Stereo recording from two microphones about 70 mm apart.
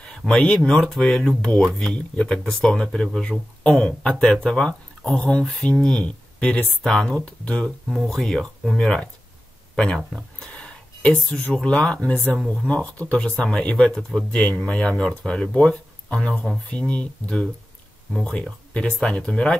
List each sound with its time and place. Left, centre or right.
0.3 s speech: centre
7.9 s speech: centre
10.4 s a sound: centre
11.5 s speech: centre